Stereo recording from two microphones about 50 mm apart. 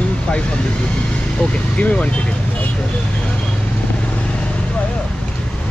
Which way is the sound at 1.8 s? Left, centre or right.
Left.